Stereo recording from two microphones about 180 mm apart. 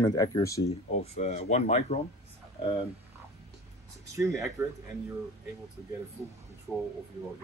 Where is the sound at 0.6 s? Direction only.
35° left (ahead or behind).